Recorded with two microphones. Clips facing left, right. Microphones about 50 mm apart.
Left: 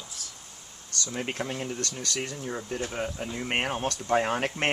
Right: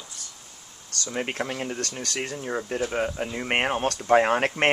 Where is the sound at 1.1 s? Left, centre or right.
Right.